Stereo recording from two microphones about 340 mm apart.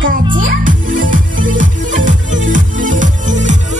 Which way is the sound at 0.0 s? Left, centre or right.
Right.